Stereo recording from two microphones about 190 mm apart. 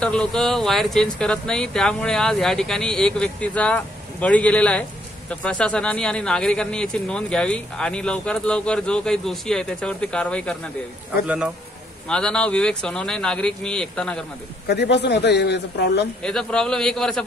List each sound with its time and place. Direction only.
0.0 s speech: 5° left (ahead or behind)
11.2 s speech: 5° right (ahead or behind)
12.1 s speech: 5° left (ahead or behind)
14.7 s speech: 60° left (ahead or behind)
16.2 s speech: 5° left (ahead or behind)